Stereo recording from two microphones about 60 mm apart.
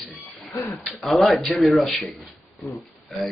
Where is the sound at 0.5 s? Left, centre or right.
Left.